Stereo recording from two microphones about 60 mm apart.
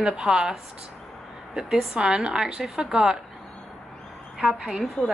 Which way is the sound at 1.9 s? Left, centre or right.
Centre.